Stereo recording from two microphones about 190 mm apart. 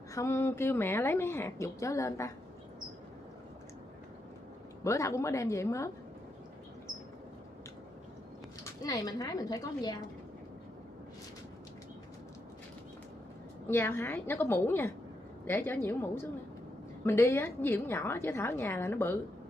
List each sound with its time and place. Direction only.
0.1 s a woman's voice: 15° left (ahead or behind)
4.8 s a woman's voice: 15° left (ahead or behind)
8.8 s a woman's voice: 20° left (ahead or behind)
13.7 s a woman's voice: 10° left (ahead or behind)